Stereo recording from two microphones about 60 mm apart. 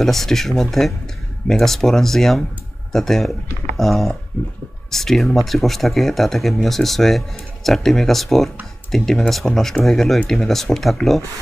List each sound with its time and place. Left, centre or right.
0.0 s speech: centre
4.3 s speech: left
4.9 s speech: centre